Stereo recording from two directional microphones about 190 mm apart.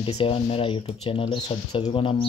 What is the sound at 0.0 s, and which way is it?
Speech, 30° left (ahead or behind).